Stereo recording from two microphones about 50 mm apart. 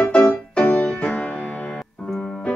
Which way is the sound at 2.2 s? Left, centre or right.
Left.